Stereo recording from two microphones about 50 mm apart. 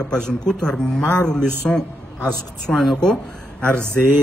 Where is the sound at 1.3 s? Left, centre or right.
Centre.